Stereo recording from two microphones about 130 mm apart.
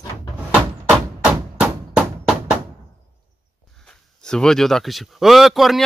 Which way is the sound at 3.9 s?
5° left (ahead or behind).